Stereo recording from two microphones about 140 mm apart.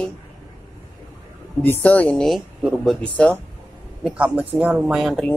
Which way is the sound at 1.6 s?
15° left (ahead or behind).